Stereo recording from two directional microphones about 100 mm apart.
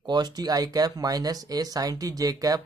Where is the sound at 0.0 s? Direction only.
45° right (ahead or behind).